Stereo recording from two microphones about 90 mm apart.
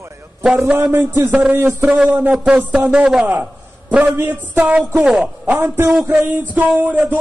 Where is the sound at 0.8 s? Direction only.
25° right (ahead or behind).